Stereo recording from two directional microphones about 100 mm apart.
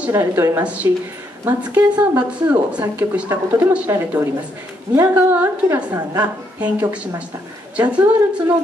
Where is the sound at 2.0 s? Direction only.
10° right (ahead or behind).